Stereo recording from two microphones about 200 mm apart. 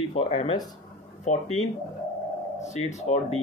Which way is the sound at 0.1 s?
30° left (ahead or behind).